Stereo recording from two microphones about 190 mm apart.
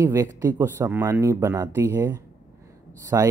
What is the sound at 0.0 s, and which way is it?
Speech, 15° right (ahead or behind).